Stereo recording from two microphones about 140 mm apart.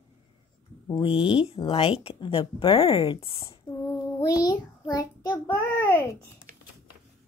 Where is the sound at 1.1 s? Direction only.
5° right (ahead or behind).